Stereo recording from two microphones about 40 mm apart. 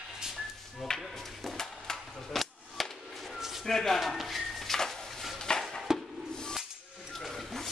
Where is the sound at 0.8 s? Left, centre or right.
Centre.